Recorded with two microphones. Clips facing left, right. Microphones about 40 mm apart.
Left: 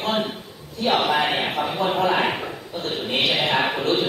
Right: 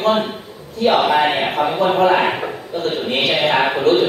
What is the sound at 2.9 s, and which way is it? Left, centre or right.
Speech, right.